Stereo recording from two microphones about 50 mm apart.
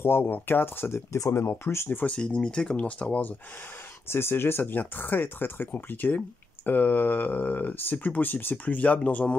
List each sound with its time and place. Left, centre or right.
0.2 s speech: left
1.1 s speech: left
1.9 s speech: left
2.1 s speech: centre
4.1 s speech: left